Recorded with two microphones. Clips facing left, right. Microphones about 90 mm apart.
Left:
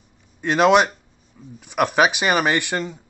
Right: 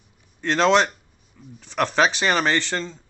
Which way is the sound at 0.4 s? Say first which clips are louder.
Left 3 dB; 15° left (ahead or behind).